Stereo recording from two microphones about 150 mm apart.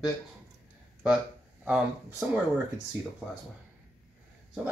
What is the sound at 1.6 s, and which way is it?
Speech, 5° right (ahead or behind).